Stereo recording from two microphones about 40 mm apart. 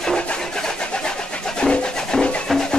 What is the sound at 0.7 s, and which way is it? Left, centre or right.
Vehicle, left.